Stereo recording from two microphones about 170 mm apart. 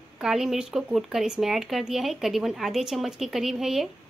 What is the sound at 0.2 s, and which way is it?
Speech, centre (ahead or behind).